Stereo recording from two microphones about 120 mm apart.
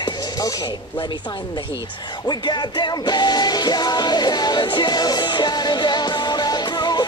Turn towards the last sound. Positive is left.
turn(degrees=35)  # may be behind; listen again after turning